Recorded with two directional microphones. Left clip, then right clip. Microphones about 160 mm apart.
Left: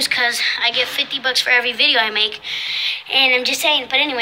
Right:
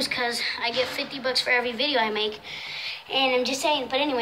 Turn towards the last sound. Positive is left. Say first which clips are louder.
# left 7 dB
turn(degrees=-5)  # may be behind; listen again after turning